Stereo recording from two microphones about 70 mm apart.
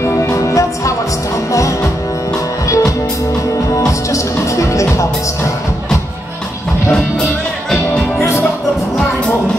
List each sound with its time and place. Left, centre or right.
0.0 s music: left
3.7 s music: left
6.9 s music: centre
8.2 s music: left